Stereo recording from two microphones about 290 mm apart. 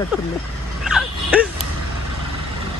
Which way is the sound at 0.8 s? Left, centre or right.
Centre.